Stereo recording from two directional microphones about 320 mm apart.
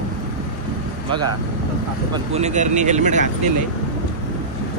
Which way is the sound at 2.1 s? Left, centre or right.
Centre.